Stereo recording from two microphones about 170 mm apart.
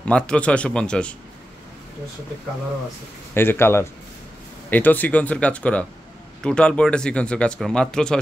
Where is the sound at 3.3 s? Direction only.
15° left (ahead or behind).